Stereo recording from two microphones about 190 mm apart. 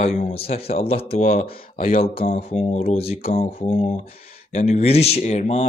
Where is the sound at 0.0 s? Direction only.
35° left (ahead or behind).